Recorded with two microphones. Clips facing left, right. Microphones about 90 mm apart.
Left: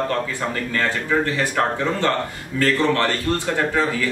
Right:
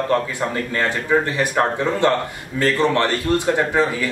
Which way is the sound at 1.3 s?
20° right (ahead or behind).